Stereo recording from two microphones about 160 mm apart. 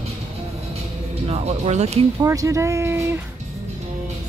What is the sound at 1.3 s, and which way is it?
Speech, 40° right (ahead or behind).